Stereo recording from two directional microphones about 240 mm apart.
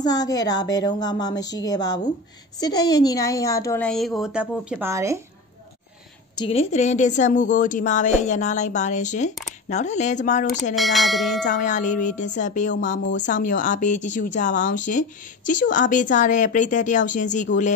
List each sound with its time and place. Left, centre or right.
0.0 s a woman's voice: centre
6.3 s speech: left
10.7 s speech: centre
11.4 s speech: left